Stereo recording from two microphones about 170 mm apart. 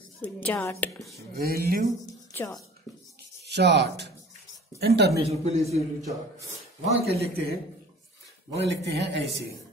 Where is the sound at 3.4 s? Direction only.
80° right.